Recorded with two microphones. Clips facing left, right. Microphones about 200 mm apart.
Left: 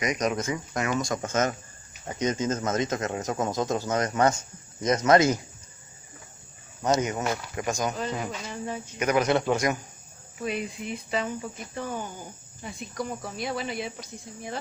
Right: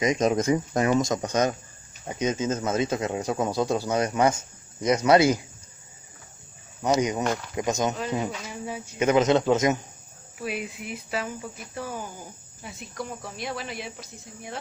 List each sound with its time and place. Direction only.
0.0 s speech: 25° right (ahead or behind)
6.8 s speech: 15° right (ahead or behind)
7.9 s speech: centre (ahead or behind)
9.0 s speech: 25° right (ahead or behind)
10.4 s speech: 5° right (ahead or behind)